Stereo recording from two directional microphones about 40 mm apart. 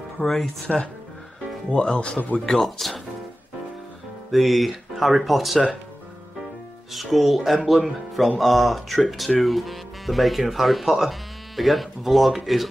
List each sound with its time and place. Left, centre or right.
0.2 s speech: centre
0.7 s speech: centre
2.6 s speech: centre
4.3 s speech: centre
6.9 s speech: centre